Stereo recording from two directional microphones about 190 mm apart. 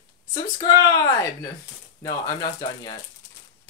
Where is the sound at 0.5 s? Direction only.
20° left (ahead or behind).